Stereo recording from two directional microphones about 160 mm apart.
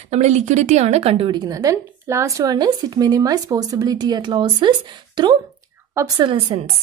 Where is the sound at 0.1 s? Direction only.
45° right (ahead or behind).